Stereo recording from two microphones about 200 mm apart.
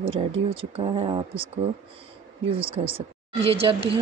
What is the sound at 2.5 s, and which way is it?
Speech, 25° right (ahead or behind).